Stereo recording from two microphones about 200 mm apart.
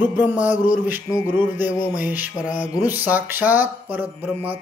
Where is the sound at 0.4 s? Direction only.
40° left (ahead or behind).